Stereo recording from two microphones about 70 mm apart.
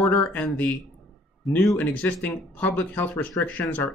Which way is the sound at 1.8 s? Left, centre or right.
Left.